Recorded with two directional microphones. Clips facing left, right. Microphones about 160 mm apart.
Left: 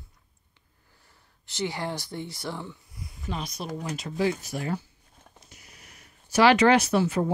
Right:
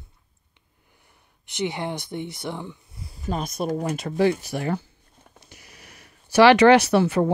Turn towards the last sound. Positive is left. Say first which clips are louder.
# right 5 dB
turn(degrees=-70)  # may be behind; listen again after turning